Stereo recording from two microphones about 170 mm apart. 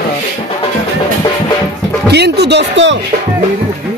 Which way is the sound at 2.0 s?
75° right (ahead or behind).